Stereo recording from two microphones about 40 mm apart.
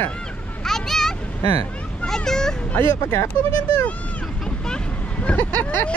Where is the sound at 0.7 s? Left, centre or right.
Centre.